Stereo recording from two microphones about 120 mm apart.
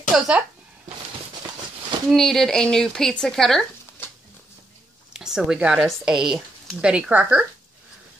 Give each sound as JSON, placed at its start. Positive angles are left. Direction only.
{"t": 0.1, "sound": "speech", "side_deg": 0}
{"t": 2.0, "sound": "speech", "side_deg": 5}
{"t": 4.0, "sound": "a sound", "side_deg": 20}
{"t": 5.1, "sound": "speech", "side_deg": -5}